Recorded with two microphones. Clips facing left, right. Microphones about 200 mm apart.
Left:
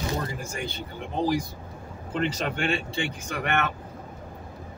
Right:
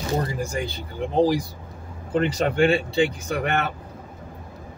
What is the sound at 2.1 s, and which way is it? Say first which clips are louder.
Speech: right 7 dB; 40° right (ahead or behind).